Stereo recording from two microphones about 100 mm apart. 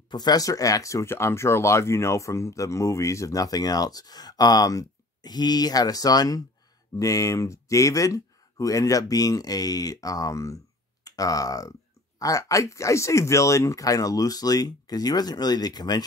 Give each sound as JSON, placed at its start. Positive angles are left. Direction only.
{"t": 0.1, "sound": "speech", "side_deg": 45}